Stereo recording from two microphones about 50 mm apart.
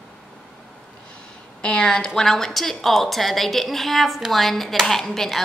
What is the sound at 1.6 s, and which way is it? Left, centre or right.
A woman's voice, centre.